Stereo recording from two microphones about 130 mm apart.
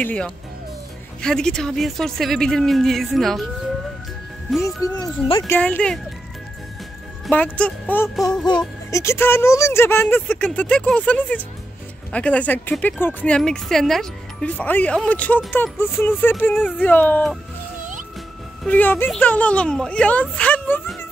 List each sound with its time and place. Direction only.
0.0 s speech: 10° left (ahead or behind)
4.5 s speech: centre (ahead or behind)
4.8 s speech: 30° left (ahead or behind)
5.5 s speech: 10° left (ahead or behind)
7.2 s speech: 10° left (ahead or behind)
8.9 s speech: 20° left (ahead or behind)
18.7 s speech: 15° left (ahead or behind)